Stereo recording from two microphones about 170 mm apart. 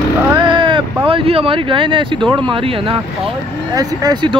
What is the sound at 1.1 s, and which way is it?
Speech, 35° right (ahead or behind).